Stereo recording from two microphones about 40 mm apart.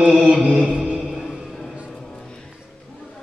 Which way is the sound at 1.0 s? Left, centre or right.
Centre.